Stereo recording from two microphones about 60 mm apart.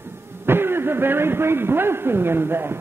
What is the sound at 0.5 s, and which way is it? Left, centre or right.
A man's voice, right.